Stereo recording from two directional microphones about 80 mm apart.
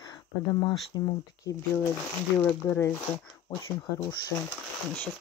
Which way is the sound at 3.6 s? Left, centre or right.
Left.